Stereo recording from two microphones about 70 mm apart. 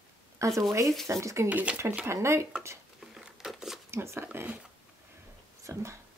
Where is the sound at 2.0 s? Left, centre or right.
Right.